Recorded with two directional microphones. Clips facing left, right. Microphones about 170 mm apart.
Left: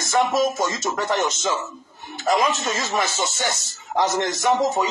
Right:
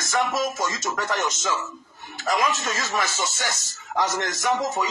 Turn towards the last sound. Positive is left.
turn(degrees=25)  # may be behind; listen again after turning